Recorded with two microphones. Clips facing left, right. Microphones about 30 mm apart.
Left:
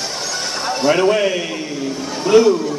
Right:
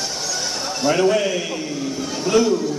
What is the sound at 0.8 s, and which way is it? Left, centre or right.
A man's voice, left.